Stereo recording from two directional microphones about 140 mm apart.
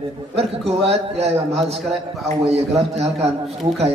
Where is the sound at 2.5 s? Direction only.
50° right (ahead or behind).